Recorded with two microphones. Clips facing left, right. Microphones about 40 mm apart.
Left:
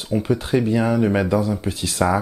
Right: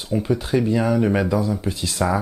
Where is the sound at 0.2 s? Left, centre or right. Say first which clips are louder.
Even; centre.